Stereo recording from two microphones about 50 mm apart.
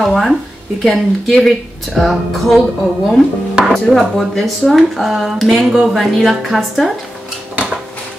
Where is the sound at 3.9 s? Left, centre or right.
Centre.